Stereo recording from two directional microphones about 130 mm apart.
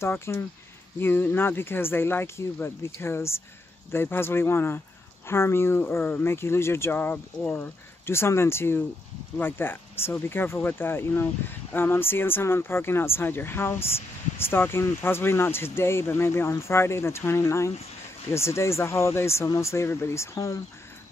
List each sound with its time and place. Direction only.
0.0 s speech: 20° left (ahead or behind)